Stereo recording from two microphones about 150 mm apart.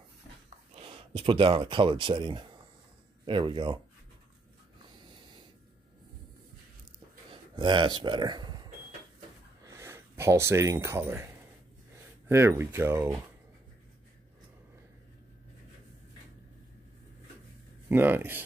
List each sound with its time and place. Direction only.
0.7 s speech: 40° right (ahead or behind)
7.5 s speech: 30° right (ahead or behind)
9.7 s speech: 20° right (ahead or behind)
12.3 s speech: 15° right (ahead or behind)
17.8 s speech: 15° right (ahead or behind)